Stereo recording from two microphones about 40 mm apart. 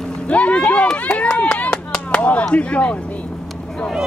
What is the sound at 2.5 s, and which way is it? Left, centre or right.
Speech, left.